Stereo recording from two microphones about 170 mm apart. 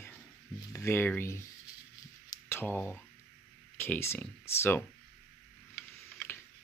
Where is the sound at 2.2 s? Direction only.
15° left (ahead or behind).